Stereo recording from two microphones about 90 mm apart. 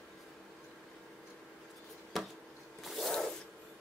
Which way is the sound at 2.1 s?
Centre (ahead or behind).